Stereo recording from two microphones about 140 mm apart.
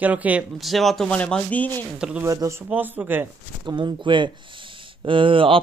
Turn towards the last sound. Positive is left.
turn(degrees=-40)  # may be behind; listen again after turning